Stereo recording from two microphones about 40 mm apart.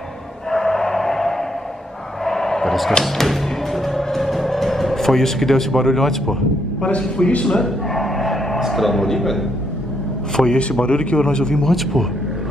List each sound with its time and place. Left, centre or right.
0.5 s a sound: centre
3.0 s music: centre
6.8 s a man's voice: left
7.4 s a sound: centre
8.5 s a man's voice: centre
10.3 s a man's voice: left
11.7 s speech: centre